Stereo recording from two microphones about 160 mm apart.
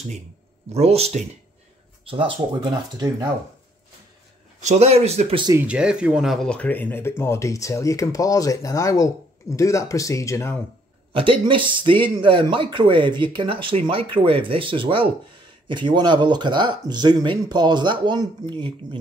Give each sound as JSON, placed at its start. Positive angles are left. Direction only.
{"t": 0.7, "sound": "speech", "side_deg": -40}
{"t": 4.6, "sound": "speech", "side_deg": -40}
{"t": 5.5, "sound": "speech", "side_deg": -10}
{"t": 11.1, "sound": "speech", "side_deg": -30}